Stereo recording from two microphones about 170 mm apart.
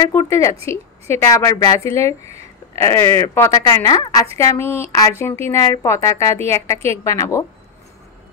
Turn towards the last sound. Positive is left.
turn(degrees=20)  # may be behind; listen again after turning